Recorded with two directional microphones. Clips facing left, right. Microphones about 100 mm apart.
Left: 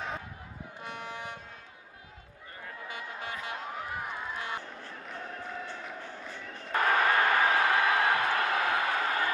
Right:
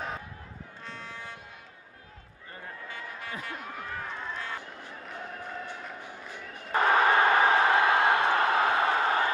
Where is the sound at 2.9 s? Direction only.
20° left (ahead or behind).